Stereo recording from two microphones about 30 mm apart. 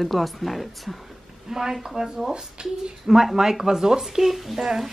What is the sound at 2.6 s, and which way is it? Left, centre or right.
Speech, right.